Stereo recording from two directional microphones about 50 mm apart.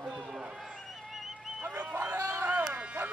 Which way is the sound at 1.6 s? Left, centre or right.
Right.